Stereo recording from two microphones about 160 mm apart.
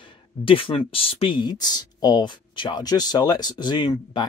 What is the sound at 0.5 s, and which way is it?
Speech, 35° left (ahead or behind).